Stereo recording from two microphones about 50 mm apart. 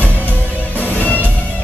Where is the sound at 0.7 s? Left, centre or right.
Left.